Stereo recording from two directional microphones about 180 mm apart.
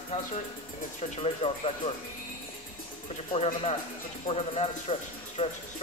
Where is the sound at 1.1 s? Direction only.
35° left (ahead or behind).